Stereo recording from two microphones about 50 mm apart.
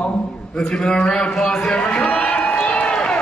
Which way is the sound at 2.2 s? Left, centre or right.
Left.